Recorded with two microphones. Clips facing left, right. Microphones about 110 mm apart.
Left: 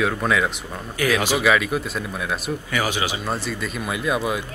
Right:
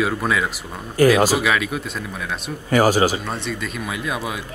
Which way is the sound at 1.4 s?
Centre (ahead or behind).